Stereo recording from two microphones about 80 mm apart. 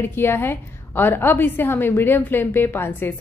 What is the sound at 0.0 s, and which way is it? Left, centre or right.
A woman's voice, left.